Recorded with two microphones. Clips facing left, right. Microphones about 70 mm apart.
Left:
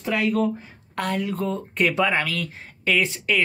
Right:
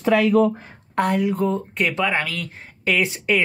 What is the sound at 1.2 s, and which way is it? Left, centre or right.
Speech, centre.